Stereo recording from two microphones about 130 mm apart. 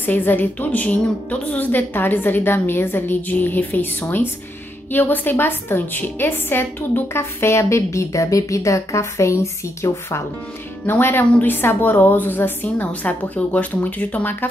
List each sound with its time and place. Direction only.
0.0 s a woman's voice: 15° left (ahead or behind)